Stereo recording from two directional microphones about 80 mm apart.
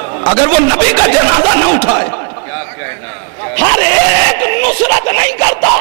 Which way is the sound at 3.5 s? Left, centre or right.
Centre.